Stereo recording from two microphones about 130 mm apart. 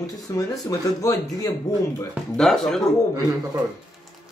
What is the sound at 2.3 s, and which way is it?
Speech, 5° left (ahead or behind).